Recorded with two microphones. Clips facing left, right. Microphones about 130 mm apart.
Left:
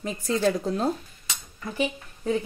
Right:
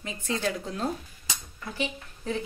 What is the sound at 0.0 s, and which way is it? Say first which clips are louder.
Speech: left 6 dB; 40° left (ahead or behind).